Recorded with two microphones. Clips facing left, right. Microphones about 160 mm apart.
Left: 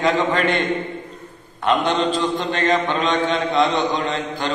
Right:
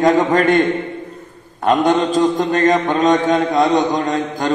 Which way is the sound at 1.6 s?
45° right (ahead or behind).